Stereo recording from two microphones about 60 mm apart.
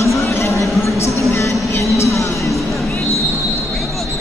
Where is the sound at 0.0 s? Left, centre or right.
Left.